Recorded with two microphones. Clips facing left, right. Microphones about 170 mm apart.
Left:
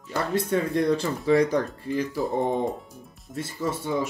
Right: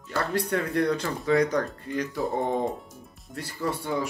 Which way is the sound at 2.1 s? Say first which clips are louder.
Even; centre (ahead or behind).